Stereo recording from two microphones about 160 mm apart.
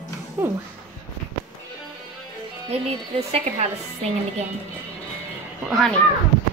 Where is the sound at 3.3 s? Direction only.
40° right (ahead or behind).